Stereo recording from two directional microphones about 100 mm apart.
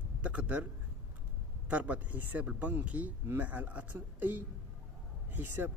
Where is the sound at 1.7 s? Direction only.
15° right (ahead or behind).